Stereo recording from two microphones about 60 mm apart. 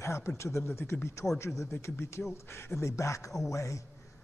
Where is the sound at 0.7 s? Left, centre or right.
Left.